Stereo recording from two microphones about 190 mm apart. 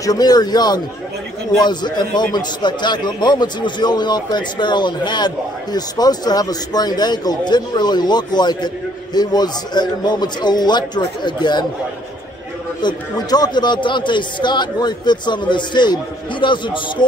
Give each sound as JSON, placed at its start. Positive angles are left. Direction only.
{"t": 0.0, "sound": "a man's voice", "side_deg": 20}
{"t": 12.8, "sound": "a man's voice", "side_deg": 20}